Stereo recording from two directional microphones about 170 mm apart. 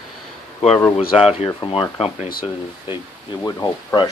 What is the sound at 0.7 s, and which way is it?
Speech, 10° left (ahead or behind).